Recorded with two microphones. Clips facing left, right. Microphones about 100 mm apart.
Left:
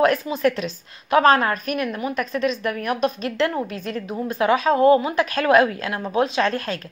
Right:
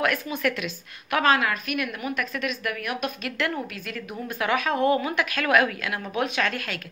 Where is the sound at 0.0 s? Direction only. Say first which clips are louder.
Left 7 dB; 30° left (ahead or behind).